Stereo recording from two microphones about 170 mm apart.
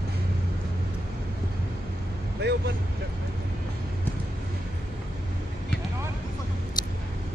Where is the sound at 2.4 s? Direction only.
75° right (ahead or behind).